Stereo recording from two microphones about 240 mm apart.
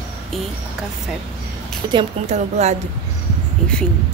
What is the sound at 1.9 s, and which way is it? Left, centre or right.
Speech, right.